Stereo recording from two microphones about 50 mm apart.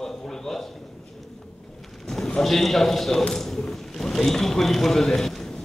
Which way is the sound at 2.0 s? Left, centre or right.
Centre.